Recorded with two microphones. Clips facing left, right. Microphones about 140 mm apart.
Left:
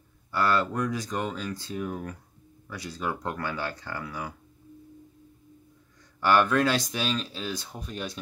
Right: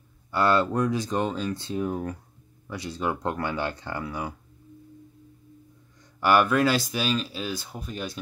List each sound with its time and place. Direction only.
0.3 s speech: 25° right (ahead or behind)
6.2 s speech: 10° right (ahead or behind)